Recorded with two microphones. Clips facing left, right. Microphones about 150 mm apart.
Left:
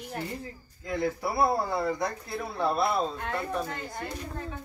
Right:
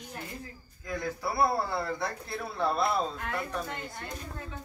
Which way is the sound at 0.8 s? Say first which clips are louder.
Left 4 dB; 25° left (ahead or behind).